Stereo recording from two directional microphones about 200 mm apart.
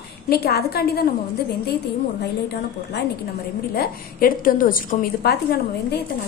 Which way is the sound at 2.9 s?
55° left (ahead or behind).